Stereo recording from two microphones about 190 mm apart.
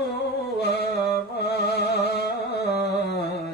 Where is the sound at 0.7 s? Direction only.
60° right (ahead or behind).